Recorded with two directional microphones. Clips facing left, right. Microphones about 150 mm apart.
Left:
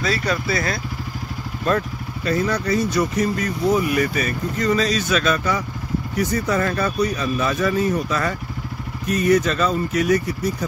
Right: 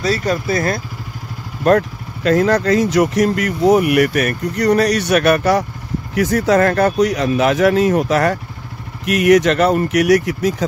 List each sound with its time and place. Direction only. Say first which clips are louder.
0.0 s speech: right 4 dB; 40° right (ahead or behind)
2.2 s speech: right 8 dB; 90° right
6.1 s speech: right 8 dB; 90° right
9.0 s speech: right 6 dB; 90° right